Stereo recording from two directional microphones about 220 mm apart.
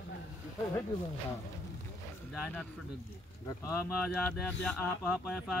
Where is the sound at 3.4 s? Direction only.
15° left (ahead or behind).